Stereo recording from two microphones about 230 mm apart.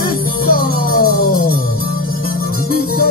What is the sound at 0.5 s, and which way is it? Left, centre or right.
Music, left.